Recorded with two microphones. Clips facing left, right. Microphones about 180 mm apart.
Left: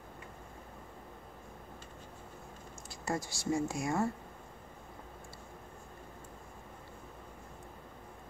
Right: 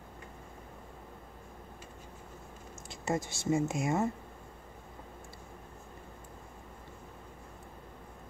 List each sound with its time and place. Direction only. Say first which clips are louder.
2.9 s speech: right 3 dB; 20° right (ahead or behind)